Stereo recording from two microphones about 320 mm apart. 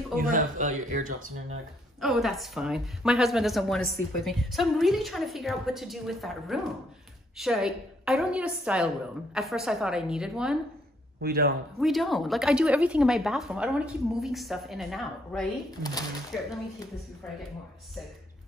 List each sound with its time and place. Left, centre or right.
0.1 s speech: right
2.0 s a woman's voice: centre
11.1 s speech: right
11.8 s a woman's voice: centre
15.8 s speech: centre